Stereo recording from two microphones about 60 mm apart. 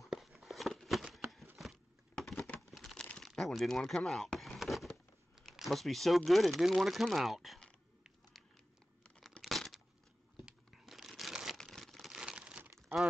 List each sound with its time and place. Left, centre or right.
0.1 s a sound: centre
2.7 s crumpling: centre
3.0 s crumpling: centre
3.3 s a sound: centre
5.4 s speech: centre
9.4 s tearing: centre
10.3 s crumpling: centre
11.5 s a sound: centre
12.1 s crumpling: centre
12.7 s crumpling: centre